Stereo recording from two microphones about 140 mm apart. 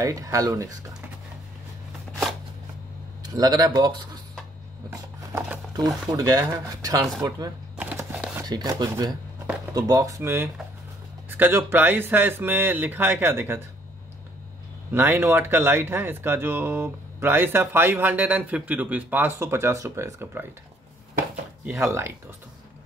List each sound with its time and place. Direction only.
0.0 s speech: 25° right (ahead or behind)
3.2 s speech: 30° right (ahead or behind)
4.9 s speech: 20° right (ahead or behind)
7.7 s a sound: 15° right (ahead or behind)
8.5 s speech: 30° right (ahead or behind)
14.9 s speech: 15° right (ahead or behind)
21.6 s speech: 20° right (ahead or behind)